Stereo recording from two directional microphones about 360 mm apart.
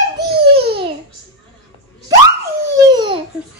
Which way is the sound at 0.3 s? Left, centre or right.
Right.